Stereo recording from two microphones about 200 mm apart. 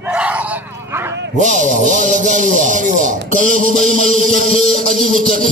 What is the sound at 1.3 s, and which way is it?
A man's voice, 40° right (ahead or behind).